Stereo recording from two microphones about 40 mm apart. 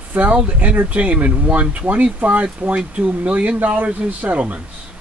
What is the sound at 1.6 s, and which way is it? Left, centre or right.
Speech, right.